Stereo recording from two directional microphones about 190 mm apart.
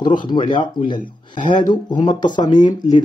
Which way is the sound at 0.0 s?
25° left (ahead or behind).